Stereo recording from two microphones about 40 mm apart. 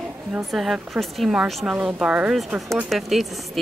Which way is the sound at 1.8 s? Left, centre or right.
Right.